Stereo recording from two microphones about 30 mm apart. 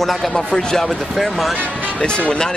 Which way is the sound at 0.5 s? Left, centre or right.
Left.